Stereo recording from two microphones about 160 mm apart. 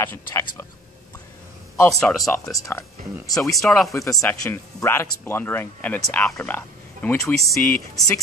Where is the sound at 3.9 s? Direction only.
20° left (ahead or behind).